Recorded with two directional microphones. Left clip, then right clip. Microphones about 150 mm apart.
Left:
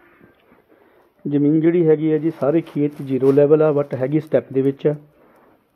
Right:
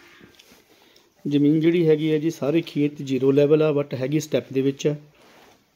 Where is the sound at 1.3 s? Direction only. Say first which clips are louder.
Left 3 dB; 15° right (ahead or behind).